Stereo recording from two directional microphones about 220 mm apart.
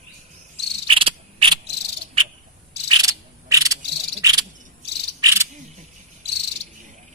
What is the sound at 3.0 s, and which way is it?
Cricket, 15° right (ahead or behind).